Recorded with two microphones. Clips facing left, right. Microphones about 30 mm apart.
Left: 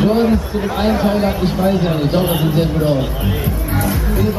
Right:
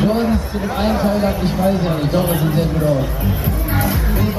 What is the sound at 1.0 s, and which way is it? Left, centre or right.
Speech, centre.